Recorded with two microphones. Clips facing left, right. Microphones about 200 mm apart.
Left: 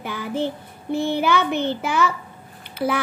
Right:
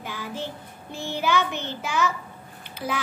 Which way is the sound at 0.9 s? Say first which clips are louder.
Left 5 dB; 55° left (ahead or behind).